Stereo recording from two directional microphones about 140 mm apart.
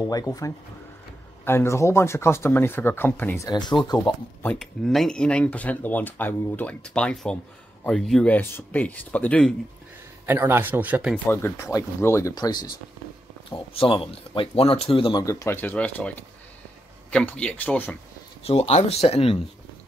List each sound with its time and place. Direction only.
0.1 s speech: 25° left (ahead or behind)
3.4 s speech: 30° left (ahead or behind)
4.6 s speech: centre (ahead or behind)
10.2 s a man's voice: 15° right (ahead or behind)
11.2 s speech: 15° left (ahead or behind)
13.5 s speech: 40° left (ahead or behind)
15.1 s speech: 25° left (ahead or behind)
18.4 s speech: 45° left (ahead or behind)